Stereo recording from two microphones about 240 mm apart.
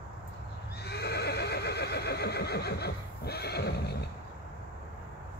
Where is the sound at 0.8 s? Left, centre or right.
Left.